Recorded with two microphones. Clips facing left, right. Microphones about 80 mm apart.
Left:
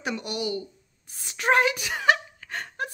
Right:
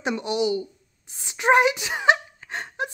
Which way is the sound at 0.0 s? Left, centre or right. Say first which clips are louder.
Right 6 dB; right.